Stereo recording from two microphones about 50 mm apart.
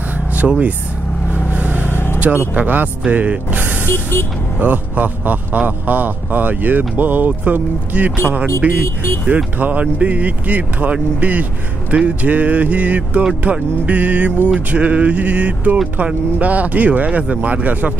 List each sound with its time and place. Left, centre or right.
0.4 s speech: right
1.6 s vehicle: right
1.9 s vehicle: left
2.1 s a man's voice: right
3.1 s mechanisms: right
3.9 s speech: left
4.6 s a man's voice: right